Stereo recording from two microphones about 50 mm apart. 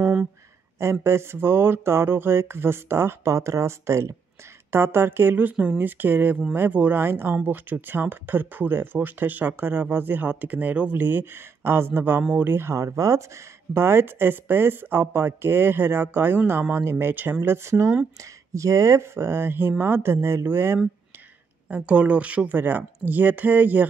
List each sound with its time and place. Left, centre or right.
1.0 s speech: right
4.6 s speech: right
7.0 s speech: right
11.0 s speech: right
12.7 s speech: right
13.8 s speech: right
17.4 s speech: right
18.5 s speech: right
21.6 s speech: right
22.6 s speech: right